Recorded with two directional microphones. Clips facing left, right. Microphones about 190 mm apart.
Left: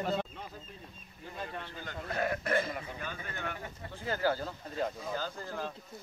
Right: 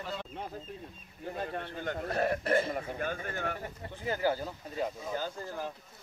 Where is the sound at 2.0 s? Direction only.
35° right (ahead or behind).